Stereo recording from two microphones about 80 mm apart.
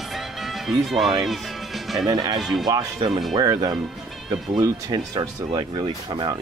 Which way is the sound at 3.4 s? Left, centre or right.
Right.